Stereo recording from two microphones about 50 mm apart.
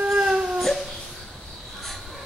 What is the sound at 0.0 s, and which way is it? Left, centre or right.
Baby cry, centre.